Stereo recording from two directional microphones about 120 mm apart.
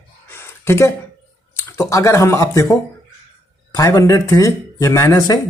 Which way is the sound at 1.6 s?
25° left (ahead or behind).